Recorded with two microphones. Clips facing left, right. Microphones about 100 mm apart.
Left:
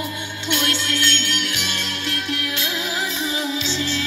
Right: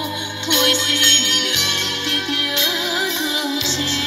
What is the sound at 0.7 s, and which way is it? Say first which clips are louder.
Music: right 1 dB; 40° left (ahead or behind).